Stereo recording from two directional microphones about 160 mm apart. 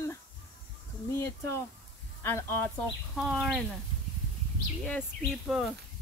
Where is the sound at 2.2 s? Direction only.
15° left (ahead or behind).